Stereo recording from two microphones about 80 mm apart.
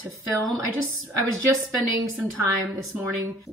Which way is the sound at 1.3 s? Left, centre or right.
Right.